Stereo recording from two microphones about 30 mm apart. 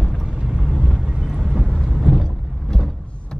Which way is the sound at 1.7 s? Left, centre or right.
Centre.